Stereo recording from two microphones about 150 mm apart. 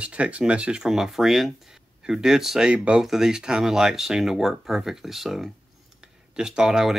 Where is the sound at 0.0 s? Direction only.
10° right (ahead or behind).